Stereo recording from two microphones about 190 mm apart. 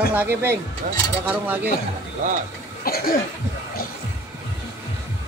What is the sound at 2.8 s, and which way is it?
Cough, 50° left (ahead or behind).